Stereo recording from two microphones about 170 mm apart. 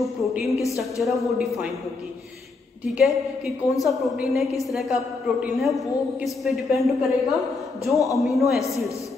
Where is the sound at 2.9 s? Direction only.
5° right (ahead or behind).